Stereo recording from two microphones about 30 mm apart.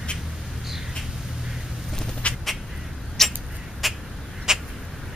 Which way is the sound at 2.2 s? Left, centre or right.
Left.